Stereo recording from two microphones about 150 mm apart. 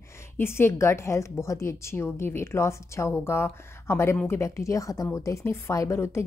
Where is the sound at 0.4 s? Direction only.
15° left (ahead or behind).